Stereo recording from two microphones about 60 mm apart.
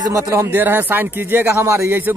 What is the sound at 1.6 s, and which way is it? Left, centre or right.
Speech, right.